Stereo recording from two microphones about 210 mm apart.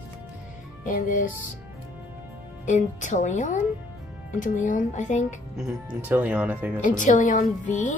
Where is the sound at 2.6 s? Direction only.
35° left (ahead or behind).